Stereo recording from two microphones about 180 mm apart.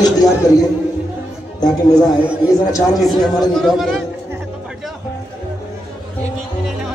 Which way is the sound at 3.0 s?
Centre (ahead or behind).